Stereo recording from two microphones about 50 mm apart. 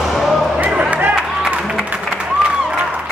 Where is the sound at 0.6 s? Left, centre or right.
Right.